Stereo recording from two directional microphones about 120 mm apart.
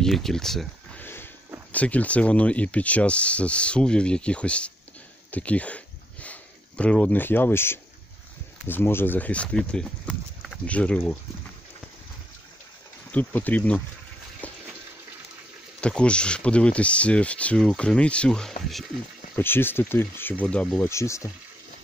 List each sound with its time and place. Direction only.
0.0 s speech: 5° left (ahead or behind)
1.0 s a sound: 15° left (ahead or behind)
1.7 s speech: 10° left (ahead or behind)
13.1 s speech: 15° left (ahead or behind)
14.4 s water: 10° left (ahead or behind)
15.8 s speech: 10° left (ahead or behind)
19.3 s speech: 20° left (ahead or behind)
20.8 s speech: 25° left (ahead or behind)